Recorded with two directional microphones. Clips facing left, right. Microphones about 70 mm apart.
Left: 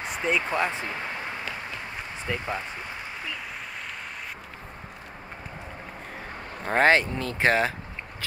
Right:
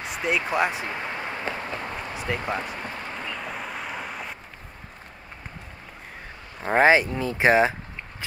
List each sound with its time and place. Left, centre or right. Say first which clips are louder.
0.0 s a sound: even; centre; by 1.8 s right
2.3 s speech: right 2 dB; centre
3.3 s vehicle: right 4 dB; centre
6.6 s speech: right 2 dB; centre